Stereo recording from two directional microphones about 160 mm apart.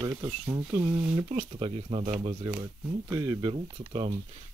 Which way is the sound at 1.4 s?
35° right (ahead or behind).